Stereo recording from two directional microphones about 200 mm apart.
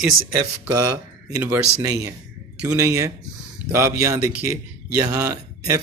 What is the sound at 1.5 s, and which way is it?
A man's voice, 15° right (ahead or behind).